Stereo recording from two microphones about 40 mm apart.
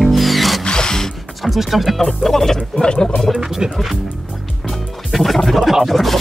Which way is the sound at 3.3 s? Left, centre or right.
Centre.